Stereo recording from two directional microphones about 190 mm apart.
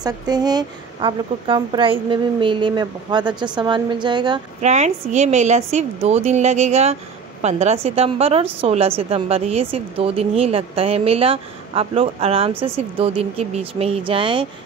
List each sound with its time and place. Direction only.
0.0 s a woman's voice: 20° right (ahead or behind)
4.6 s a woman's voice: 35° right (ahead or behind)